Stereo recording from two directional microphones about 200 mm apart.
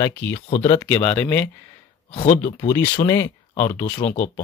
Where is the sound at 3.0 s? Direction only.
15° left (ahead or behind).